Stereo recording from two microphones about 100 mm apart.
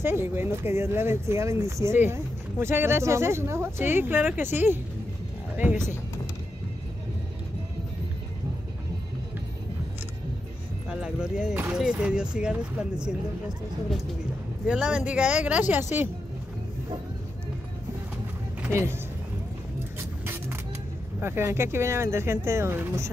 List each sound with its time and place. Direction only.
0.0 s speech: 25° right (ahead or behind)
10.9 s speech: 5° right (ahead or behind)
14.7 s speech: 10° right (ahead or behind)
18.7 s speech: 25° right (ahead or behind)
20.0 s vehicle: 25° right (ahead or behind)
21.2 s speech: 25° right (ahead or behind)